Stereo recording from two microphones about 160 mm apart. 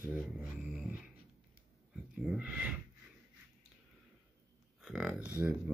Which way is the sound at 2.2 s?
5° right (ahead or behind).